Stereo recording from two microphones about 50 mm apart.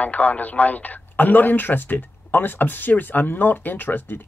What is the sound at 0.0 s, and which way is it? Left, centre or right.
Speech, left.